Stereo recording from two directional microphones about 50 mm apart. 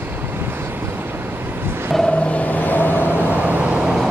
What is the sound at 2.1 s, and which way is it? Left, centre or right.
Vehicle, left.